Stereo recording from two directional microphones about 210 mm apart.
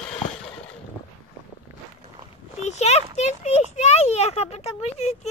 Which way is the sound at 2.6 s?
30° left (ahead or behind).